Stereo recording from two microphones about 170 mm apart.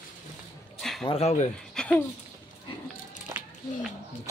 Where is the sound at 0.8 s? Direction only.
Centre (ahead or behind).